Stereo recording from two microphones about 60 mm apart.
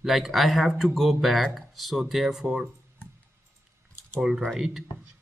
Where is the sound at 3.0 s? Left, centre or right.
Left.